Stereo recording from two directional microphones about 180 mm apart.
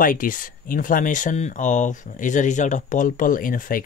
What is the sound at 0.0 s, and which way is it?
Speech, 50° left (ahead or behind).